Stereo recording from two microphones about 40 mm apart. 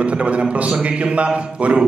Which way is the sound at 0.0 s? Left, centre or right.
Right.